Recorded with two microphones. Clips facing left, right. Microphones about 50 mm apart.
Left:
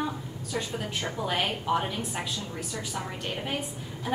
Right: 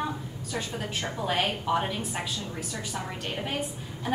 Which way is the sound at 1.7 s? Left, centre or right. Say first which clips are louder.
Left 1 dB; centre.